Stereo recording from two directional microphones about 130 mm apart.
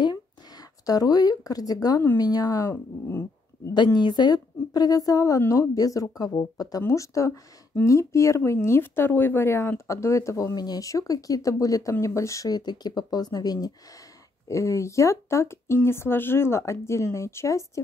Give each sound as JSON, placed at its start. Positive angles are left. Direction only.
{"t": 0.8, "sound": "speech", "side_deg": 30}
{"t": 2.7, "sound": "speech", "side_deg": 15}
{"t": 3.7, "sound": "a woman's voice", "side_deg": 35}